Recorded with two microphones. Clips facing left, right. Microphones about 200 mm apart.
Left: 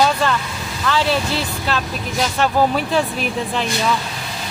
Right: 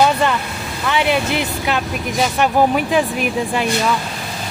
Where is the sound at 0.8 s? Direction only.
15° right (ahead or behind).